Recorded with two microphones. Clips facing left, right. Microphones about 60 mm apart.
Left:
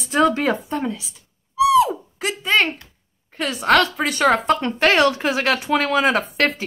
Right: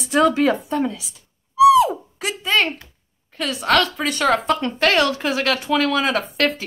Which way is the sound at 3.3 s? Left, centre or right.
Centre.